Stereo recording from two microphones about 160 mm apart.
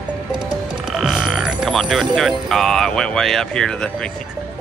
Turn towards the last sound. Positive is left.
turn(degrees=5)  # may be behind; listen again after turning